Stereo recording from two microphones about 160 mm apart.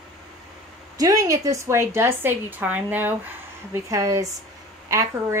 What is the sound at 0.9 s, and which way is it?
A woman's voice, 20° right (ahead or behind).